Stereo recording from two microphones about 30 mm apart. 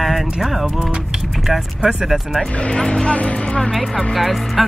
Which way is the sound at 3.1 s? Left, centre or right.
Left.